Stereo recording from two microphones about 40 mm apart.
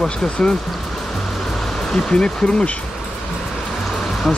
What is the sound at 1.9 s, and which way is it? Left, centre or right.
Speech, centre.